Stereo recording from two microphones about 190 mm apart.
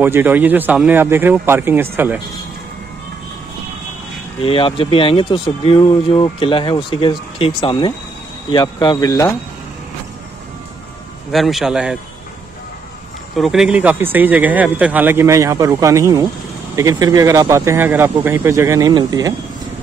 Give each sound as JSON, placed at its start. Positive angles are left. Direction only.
{"t": 0.0, "sound": "speech", "side_deg": -10}
{"t": 4.4, "sound": "speech", "side_deg": 30}
{"t": 11.3, "sound": "a man's voice", "side_deg": 0}
{"t": 13.4, "sound": "speech", "side_deg": 0}